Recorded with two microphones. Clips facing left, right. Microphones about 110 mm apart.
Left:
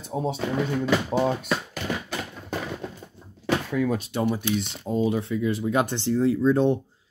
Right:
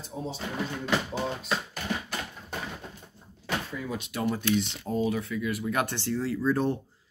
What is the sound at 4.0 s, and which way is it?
Speech, 30° left (ahead or behind).